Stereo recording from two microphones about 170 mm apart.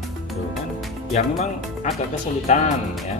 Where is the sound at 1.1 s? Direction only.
40° left (ahead or behind).